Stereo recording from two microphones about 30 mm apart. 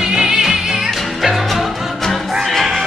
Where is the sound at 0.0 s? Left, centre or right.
Right.